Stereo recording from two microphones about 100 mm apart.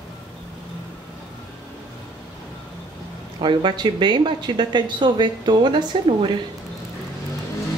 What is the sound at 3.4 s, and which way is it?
Speech, 50° right (ahead or behind).